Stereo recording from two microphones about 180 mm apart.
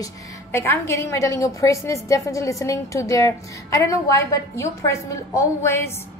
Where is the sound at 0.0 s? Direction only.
15° left (ahead or behind).